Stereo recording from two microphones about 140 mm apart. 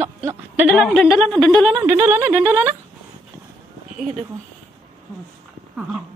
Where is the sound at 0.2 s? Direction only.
20° right (ahead or behind).